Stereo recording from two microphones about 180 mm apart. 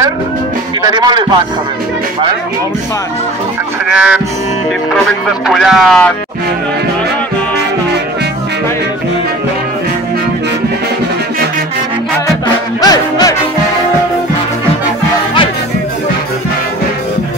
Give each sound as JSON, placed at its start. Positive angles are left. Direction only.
{"t": 0.8, "sound": "a man's voice", "side_deg": -25}
{"t": 3.9, "sound": "music", "side_deg": -5}
{"t": 5.5, "sound": "speech", "side_deg": 0}
{"t": 12.8, "sound": "music", "side_deg": 20}